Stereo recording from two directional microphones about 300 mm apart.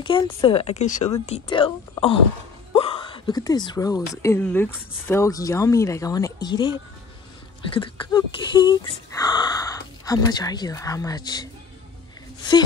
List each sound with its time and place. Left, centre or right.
0.0 s speech: centre
2.7 s a sound: centre
4.2 s speech: centre
7.7 s speech: centre